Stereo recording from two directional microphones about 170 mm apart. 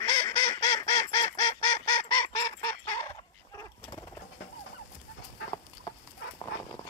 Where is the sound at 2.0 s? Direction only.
20° left (ahead or behind).